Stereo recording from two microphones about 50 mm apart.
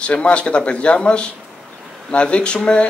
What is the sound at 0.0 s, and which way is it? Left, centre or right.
Speech, left.